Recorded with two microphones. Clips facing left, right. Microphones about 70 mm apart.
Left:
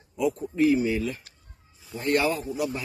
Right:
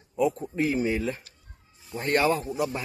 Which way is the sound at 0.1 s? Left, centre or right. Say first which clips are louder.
Right 1 dB; right.